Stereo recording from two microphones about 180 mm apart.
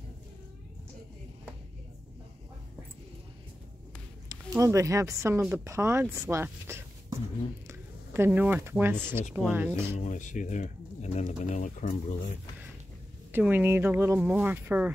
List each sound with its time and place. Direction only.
4.3 s speech: 20° right (ahead or behind)
9.9 s speech: 45° left (ahead or behind)
13.3 s speech: 10° right (ahead or behind)